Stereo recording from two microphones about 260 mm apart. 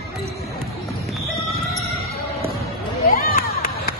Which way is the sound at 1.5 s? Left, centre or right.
Centre.